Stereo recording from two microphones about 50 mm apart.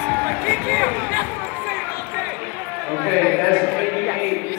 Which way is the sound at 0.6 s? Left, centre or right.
Left.